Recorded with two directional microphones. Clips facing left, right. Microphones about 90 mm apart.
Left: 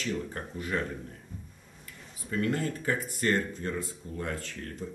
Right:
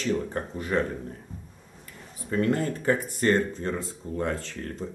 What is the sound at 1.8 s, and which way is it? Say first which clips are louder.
Speech: right 5 dB; 35° right (ahead or behind).